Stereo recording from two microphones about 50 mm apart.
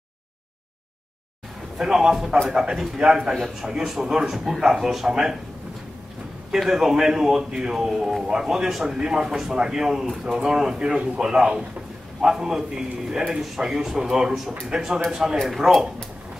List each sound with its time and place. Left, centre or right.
1.8 s a man's voice: centre
6.5 s a man's voice: centre